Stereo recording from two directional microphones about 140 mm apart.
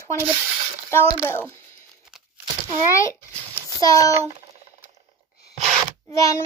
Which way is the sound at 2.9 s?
20° left (ahead or behind).